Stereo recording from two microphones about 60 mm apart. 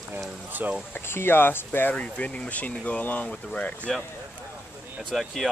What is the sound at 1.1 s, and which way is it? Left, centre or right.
Speech, left.